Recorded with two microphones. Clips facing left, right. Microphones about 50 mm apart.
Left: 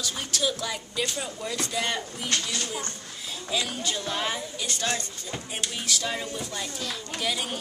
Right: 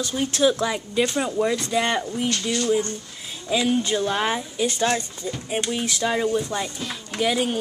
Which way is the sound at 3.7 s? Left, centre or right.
Right.